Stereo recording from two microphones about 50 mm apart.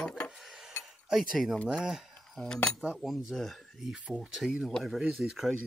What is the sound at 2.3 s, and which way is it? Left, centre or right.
Cutlery, centre.